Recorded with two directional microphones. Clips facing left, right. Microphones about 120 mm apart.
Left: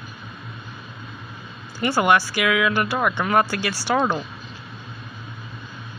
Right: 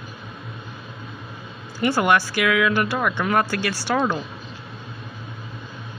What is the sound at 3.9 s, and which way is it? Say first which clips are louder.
Speech: left 1 dB; 20° left (ahead or behind).